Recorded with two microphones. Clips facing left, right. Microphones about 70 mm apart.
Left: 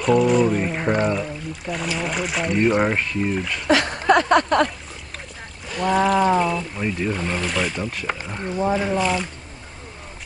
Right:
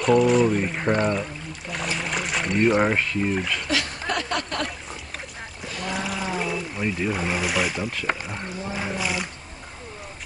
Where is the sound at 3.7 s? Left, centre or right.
Left.